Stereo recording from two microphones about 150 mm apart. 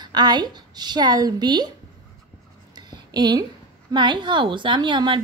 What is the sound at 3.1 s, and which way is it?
A woman's voice, 30° right (ahead or behind).